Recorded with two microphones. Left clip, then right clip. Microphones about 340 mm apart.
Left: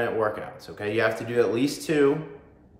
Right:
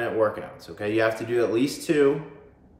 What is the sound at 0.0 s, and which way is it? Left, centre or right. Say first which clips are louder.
Speech: right 1 dB; centre.